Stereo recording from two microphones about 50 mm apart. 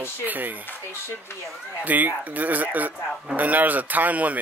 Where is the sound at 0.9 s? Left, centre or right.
Left.